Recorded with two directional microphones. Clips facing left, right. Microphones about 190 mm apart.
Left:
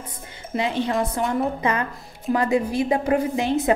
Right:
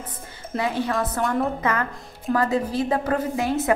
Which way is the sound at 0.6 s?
20° left (ahead or behind).